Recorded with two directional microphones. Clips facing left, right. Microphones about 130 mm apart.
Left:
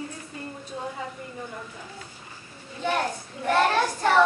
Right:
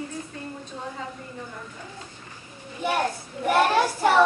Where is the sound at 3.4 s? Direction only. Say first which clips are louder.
Right 2 dB; 10° right (ahead or behind).